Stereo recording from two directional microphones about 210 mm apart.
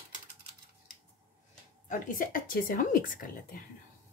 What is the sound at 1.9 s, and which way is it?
A woman's voice, 40° left (ahead or behind).